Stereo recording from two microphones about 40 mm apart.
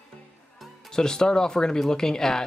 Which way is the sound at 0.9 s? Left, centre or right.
Centre.